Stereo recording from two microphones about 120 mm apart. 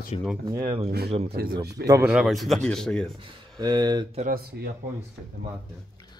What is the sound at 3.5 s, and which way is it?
Speech, 40° right (ahead or behind).